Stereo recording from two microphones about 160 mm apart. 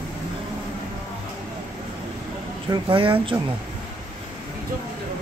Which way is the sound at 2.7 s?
30° right (ahead or behind).